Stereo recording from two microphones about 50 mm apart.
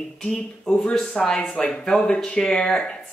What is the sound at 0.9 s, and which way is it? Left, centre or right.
Speech, centre.